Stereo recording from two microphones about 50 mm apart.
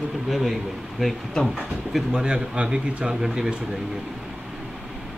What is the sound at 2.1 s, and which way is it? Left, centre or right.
Speech, centre.